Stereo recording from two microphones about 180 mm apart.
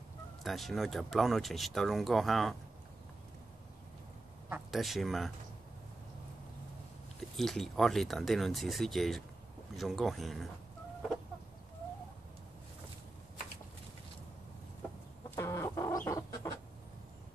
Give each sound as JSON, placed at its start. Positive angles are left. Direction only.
{"t": 0.4, "sound": "speech", "side_deg": 0}
{"t": 4.5, "sound": "speech", "side_deg": 0}
{"t": 7.2, "sound": "speech", "side_deg": 0}
{"t": 15.3, "sound": "chicken", "side_deg": 15}